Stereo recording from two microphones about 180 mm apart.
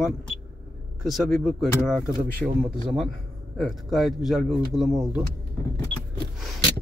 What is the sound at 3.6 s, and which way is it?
Speech, centre (ahead or behind).